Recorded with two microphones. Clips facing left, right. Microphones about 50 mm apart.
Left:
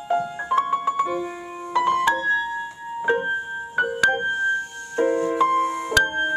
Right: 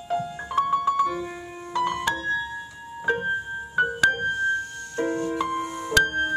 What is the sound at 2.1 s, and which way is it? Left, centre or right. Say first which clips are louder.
Music: left 5 dB; left.